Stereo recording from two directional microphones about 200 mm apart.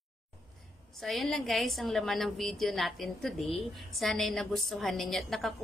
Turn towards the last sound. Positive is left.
turn(degrees=0)  # may be behind; listen again after turning